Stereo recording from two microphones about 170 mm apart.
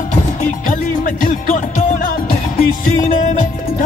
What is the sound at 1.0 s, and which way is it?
Music, 50° left (ahead or behind).